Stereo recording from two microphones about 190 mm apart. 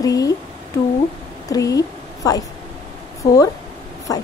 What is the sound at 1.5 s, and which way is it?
Speech, 20° left (ahead or behind).